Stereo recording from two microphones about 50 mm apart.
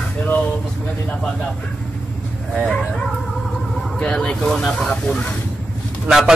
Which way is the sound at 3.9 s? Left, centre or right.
Centre.